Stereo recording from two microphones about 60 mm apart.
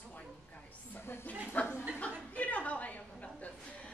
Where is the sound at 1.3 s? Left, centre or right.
Left.